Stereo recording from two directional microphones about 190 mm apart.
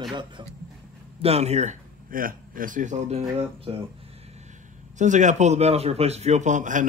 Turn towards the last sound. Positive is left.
turn(degrees=-40)  # may be behind; listen again after turning